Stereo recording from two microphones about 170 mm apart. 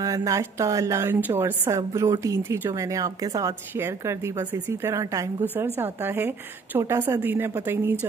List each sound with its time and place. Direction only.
0.0 s a woman's voice: 20° right (ahead or behind)